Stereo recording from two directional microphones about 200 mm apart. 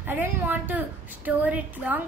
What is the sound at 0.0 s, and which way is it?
A woman's voice, 10° right (ahead or behind).